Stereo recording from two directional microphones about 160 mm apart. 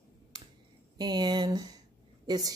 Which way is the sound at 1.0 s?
25° right (ahead or behind).